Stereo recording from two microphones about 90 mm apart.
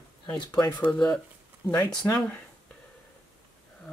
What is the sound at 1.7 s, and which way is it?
Speech, 40° left (ahead or behind).